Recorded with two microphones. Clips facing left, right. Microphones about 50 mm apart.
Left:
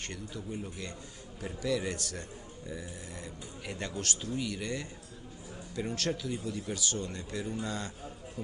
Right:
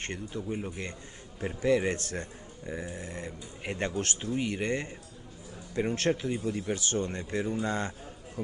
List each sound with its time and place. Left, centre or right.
0.0 s a man's voice: right